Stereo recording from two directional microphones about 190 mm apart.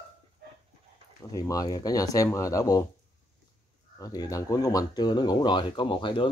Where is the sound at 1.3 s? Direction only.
20° left (ahead or behind).